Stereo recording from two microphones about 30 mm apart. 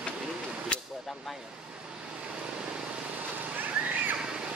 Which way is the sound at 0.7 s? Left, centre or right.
Left.